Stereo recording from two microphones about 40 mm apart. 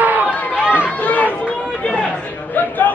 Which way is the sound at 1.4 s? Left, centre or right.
Left.